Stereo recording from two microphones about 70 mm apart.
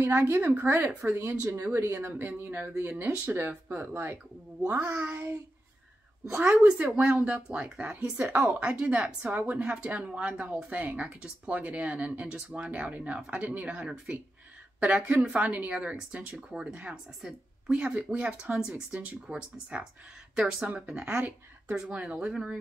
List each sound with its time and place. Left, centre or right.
0.3 s a woman's voice: right
6.2 s a woman's voice: centre